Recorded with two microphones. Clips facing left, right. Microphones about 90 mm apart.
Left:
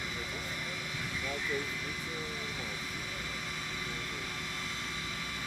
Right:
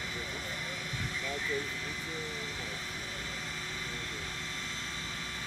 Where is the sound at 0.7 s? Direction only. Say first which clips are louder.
Even; 40° right (ahead or behind).